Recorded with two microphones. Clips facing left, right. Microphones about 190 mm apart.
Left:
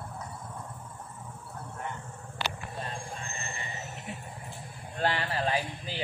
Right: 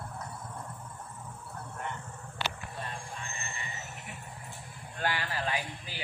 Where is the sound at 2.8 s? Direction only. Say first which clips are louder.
Left 2 dB; 30° left (ahead or behind).